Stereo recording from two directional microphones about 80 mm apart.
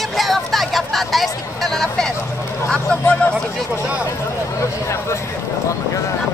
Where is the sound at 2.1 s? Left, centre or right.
Left.